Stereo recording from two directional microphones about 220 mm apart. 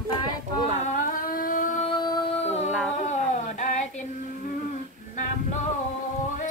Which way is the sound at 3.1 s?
30° left (ahead or behind).